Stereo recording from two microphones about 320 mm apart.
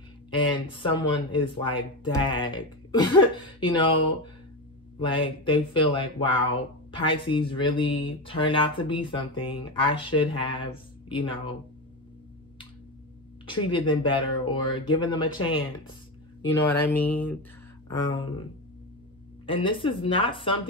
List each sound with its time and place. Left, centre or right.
0.4 s speech: centre
4.9 s speech: centre
13.7 s speech: centre
16.8 s a sound: centre
17.8 s speech: centre
19.4 s speech: centre